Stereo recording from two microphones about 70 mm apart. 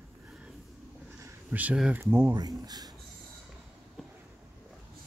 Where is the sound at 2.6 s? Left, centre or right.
Right.